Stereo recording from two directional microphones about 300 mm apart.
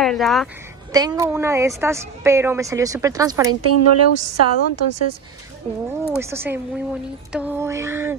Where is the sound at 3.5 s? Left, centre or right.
Right.